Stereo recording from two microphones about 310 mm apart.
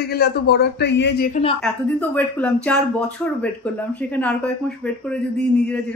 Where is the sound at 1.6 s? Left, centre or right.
Centre.